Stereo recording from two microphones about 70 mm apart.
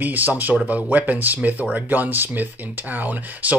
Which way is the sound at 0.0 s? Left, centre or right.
Right.